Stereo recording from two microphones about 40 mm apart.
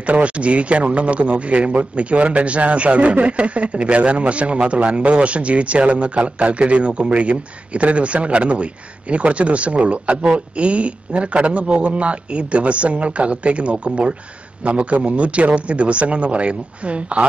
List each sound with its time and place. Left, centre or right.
0.0 s a man's voice: right